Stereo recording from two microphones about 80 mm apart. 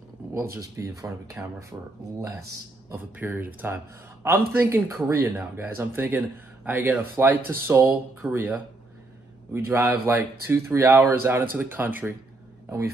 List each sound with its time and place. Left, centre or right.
0.3 s speech: right
3.0 s speech: right
9.5 s speech: right
11.5 s speech: right